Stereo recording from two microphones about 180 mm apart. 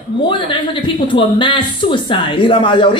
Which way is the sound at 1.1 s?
30° left (ahead or behind).